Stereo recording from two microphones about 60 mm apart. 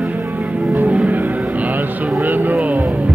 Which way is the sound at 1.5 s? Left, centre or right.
Right.